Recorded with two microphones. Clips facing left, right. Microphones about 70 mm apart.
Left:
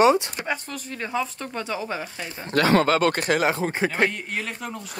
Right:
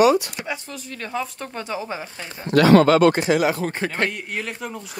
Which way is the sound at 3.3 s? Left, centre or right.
Left.